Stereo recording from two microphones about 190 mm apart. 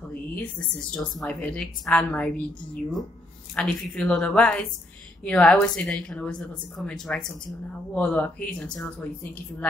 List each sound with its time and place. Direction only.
0.4 s a woman's voice: 5° left (ahead or behind)